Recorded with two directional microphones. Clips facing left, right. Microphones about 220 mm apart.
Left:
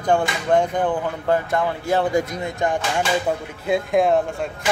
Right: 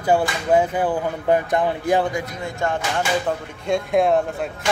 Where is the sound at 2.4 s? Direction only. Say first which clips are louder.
Left 2 dB; 15° left (ahead or behind).